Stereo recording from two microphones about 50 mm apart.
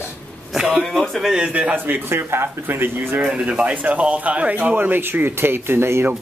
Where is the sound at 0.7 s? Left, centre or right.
Centre.